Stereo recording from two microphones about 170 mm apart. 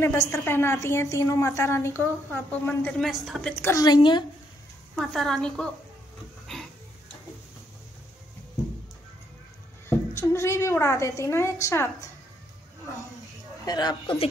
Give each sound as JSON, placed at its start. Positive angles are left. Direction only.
{"t": 0.0, "sound": "a woman's voice", "side_deg": 15}
{"t": 3.6, "sound": "a woman's voice", "side_deg": 20}
{"t": 4.9, "sound": "a woman's voice", "side_deg": 0}
{"t": 6.4, "sound": "a sound", "side_deg": 5}
{"t": 9.8, "sound": "a woman's voice", "side_deg": 15}
{"t": 13.7, "sound": "a woman's voice", "side_deg": 25}